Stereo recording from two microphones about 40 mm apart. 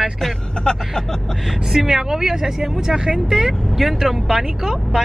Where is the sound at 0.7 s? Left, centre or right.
Centre.